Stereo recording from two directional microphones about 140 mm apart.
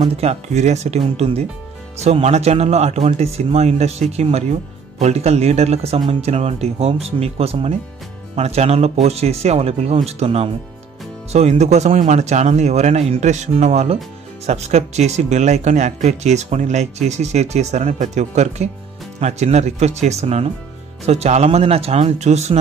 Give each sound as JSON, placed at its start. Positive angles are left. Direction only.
{"t": 0.0, "sound": "speech", "side_deg": -50}